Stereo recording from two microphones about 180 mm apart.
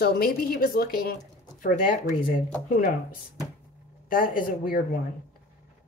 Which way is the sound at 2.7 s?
45° left (ahead or behind).